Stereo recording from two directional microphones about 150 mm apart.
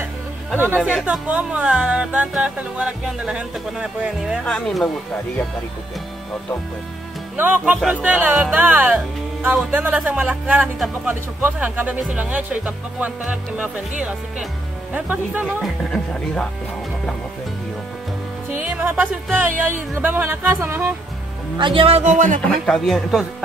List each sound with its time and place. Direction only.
0.8 s speech: 5° right (ahead or behind)
7.3 s speech: 15° right (ahead or behind)
15.9 s speech: 5° left (ahead or behind)
18.5 s music: 10° right (ahead or behind)
19.3 s speech: 15° right (ahead or behind)
21.5 s speech: 35° right (ahead or behind); by 22.4 s 55° right (ahead or behind)
22.4 s speech: centre (ahead or behind)